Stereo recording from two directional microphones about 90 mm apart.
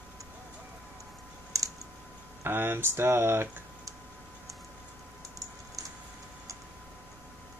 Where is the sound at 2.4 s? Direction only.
25° right (ahead or behind).